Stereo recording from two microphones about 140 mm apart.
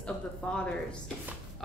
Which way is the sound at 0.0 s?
5° left (ahead or behind).